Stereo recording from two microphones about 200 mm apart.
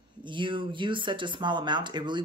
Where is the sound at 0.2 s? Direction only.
25° right (ahead or behind).